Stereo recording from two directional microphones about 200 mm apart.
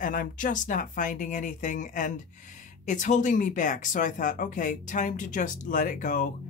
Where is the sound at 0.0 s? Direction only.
45° left (ahead or behind).